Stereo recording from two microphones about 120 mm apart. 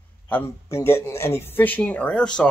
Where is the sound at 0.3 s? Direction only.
20° left (ahead or behind).